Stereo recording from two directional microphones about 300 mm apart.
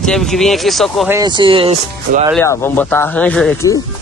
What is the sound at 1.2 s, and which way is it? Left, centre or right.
Speech, centre.